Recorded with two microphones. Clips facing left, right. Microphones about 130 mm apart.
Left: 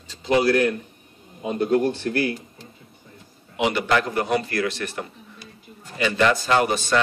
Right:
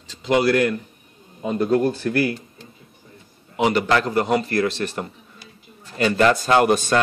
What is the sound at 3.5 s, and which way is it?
Speech, 40° right (ahead or behind).